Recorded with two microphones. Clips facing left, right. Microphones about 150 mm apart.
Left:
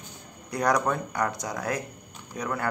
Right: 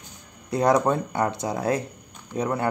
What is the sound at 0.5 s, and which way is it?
A man's voice, 25° right (ahead or behind).